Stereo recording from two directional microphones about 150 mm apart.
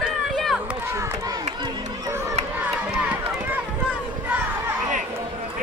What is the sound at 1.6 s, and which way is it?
Run, 20° right (ahead or behind).